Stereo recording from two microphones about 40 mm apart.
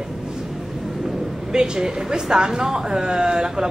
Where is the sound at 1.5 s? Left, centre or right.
Centre.